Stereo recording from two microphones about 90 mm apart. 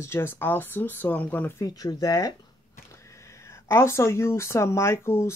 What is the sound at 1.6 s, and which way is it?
Speech, 45° left (ahead or behind).